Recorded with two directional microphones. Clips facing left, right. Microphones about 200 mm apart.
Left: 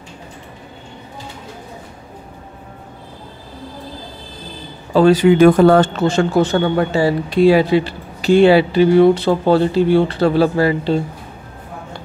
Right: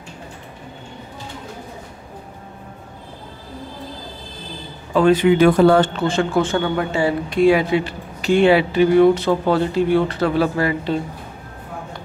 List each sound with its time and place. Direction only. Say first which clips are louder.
4.9 s speech: left 3 dB; 35° left (ahead or behind)